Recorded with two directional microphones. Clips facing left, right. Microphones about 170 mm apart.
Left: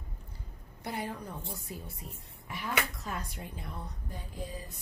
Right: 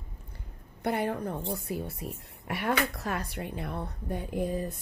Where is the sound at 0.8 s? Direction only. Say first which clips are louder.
Right 8 dB; 60° right (ahead or behind).